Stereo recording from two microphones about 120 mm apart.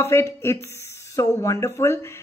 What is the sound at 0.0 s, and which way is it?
Speech, 25° left (ahead or behind).